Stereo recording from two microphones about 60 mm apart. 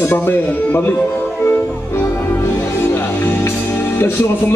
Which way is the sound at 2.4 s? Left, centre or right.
Left.